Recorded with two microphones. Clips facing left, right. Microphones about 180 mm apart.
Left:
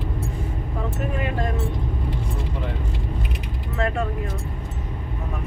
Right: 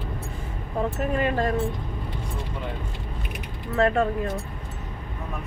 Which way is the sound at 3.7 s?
40° right (ahead or behind).